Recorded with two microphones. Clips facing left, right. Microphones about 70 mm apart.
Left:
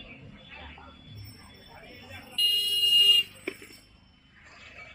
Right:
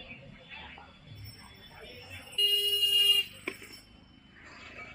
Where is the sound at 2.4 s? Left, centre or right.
Right.